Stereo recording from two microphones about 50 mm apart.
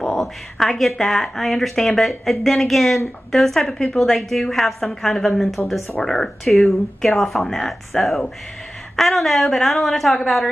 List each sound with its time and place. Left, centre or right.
0.2 s speech: centre
5.6 s speech: left
5.9 s speech: centre